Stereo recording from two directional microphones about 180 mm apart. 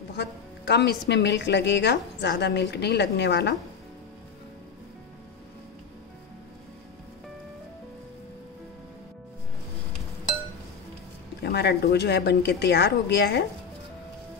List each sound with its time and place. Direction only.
0.1 s a woman's voice: 70° left (ahead or behind)
11.4 s a woman's voice: 65° left (ahead or behind)
13.1 s speech: 85° left